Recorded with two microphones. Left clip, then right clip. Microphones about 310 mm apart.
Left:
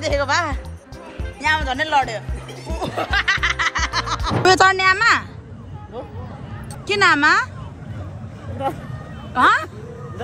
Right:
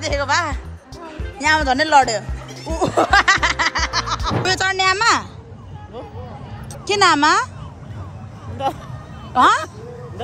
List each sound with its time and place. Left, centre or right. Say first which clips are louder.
0.0 s speech: even; centre
2.7 s music: right 7 dB; right
4.2 s speech: left 10 dB; centre
6.9 s speech: right 1 dB; centre
9.3 s speech: right 1 dB; centre